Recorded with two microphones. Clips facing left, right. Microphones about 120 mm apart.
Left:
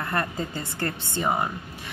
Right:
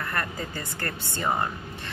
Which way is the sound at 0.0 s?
20° left (ahead or behind).